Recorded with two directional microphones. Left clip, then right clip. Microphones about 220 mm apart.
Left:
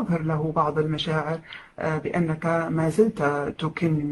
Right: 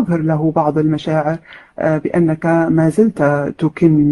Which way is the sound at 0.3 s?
40° right (ahead or behind).